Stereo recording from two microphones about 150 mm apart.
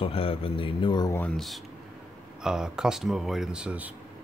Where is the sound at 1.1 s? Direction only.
5° left (ahead or behind).